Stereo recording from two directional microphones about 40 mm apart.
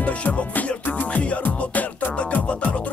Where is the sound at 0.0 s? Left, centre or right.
Left.